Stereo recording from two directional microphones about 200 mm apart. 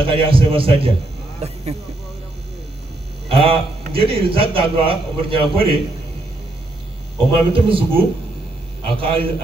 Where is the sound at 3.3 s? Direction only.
25° right (ahead or behind).